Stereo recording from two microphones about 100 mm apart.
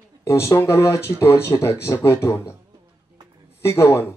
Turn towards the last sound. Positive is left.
turn(degrees=25)  # may be behind; listen again after turning